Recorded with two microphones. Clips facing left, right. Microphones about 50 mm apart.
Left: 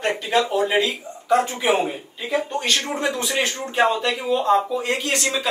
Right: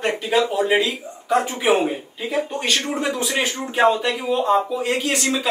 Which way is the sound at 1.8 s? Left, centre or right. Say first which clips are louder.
Right 2 dB; centre.